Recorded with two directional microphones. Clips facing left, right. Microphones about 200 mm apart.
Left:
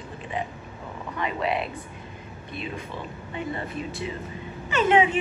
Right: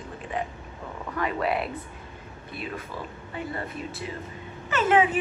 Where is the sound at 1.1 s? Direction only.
25° left (ahead or behind).